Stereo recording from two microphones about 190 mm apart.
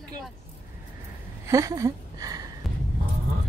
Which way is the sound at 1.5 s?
15° right (ahead or behind).